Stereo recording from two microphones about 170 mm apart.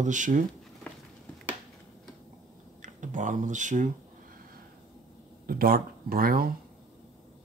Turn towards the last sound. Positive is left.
turn(degrees=-60)  # may be behind; listen again after turning